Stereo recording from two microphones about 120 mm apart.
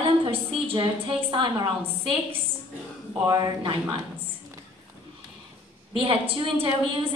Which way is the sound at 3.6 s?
45° right (ahead or behind).